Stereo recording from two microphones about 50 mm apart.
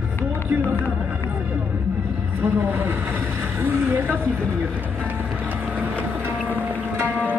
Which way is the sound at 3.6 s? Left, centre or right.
Right.